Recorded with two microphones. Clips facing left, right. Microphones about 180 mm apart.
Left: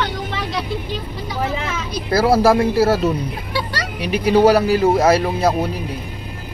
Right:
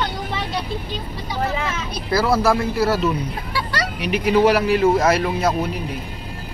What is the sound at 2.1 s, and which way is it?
Speech, 40° left (ahead or behind).